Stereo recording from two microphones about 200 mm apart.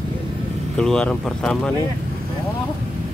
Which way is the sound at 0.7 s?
5° left (ahead or behind).